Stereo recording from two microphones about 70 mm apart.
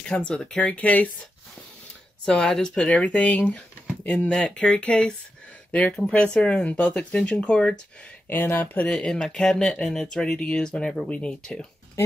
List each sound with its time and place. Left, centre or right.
0.1 s speech: centre
2.2 s speech: centre
8.3 s speech: left
8.8 s speech: centre
11.1 s speech: centre